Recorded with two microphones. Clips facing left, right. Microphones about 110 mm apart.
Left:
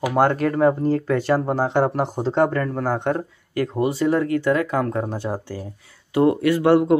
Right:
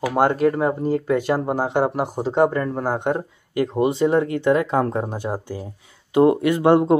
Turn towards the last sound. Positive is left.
turn(degrees=-20)  # may be behind; listen again after turning